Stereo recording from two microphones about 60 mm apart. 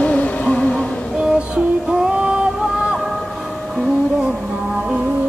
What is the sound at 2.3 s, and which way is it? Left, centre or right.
Music, centre.